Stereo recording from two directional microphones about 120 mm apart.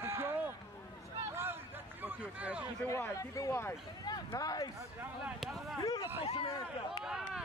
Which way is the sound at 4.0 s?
35° left (ahead or behind).